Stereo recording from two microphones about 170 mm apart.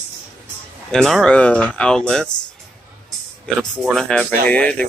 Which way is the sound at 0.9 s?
5° left (ahead or behind).